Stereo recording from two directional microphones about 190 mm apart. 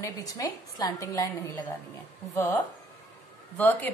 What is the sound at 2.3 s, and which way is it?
A woman's voice, 10° left (ahead or behind).